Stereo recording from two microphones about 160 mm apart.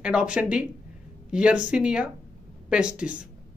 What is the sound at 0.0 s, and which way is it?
Speech, 5° right (ahead or behind).